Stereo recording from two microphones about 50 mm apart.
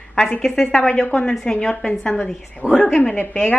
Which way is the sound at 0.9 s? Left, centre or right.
Centre.